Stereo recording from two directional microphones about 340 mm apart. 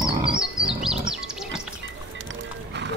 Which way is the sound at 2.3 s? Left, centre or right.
Right.